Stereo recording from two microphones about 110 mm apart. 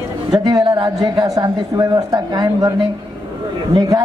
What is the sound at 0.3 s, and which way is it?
Speech, 35° right (ahead or behind).